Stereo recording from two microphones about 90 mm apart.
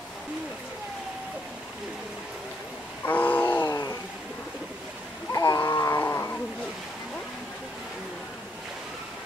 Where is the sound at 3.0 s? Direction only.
20° left (ahead or behind).